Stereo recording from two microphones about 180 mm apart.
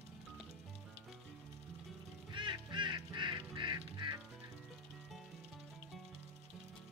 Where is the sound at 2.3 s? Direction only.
25° right (ahead or behind).